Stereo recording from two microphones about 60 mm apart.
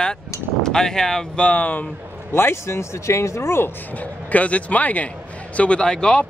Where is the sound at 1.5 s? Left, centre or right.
Left.